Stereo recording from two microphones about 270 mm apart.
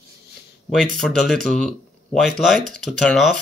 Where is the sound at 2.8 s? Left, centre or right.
Centre.